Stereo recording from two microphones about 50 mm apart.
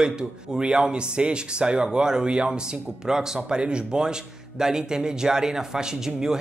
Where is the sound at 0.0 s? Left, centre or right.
Centre.